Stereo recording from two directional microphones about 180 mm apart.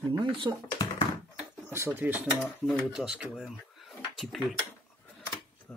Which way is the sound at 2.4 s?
Centre (ahead or behind).